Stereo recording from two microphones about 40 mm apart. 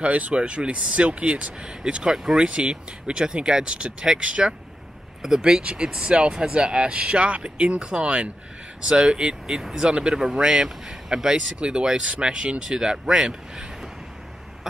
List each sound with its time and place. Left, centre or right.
0.0 s speech: right
5.2 s speech: centre